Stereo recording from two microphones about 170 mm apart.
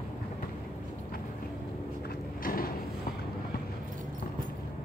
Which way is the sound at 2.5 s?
55° left (ahead or behind).